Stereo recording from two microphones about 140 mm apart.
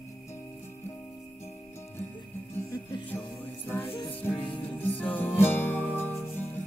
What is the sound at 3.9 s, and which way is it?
Music, 40° left (ahead or behind).